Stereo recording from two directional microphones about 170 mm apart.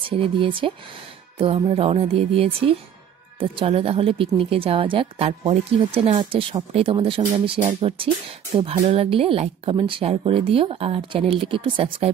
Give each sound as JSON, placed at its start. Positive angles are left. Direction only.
{"t": 0.0, "sound": "speech", "side_deg": -30}